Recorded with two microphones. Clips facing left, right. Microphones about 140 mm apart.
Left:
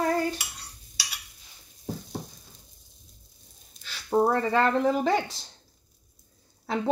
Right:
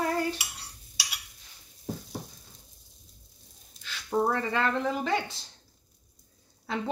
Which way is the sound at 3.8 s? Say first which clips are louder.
Left 4 dB; 40° left (ahead or behind).